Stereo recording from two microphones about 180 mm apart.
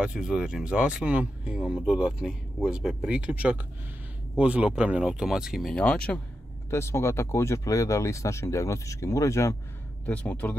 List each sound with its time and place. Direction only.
0.0 s speech: 5° right (ahead or behind)